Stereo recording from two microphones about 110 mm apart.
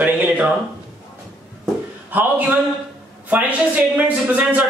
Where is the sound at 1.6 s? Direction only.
15° right (ahead or behind).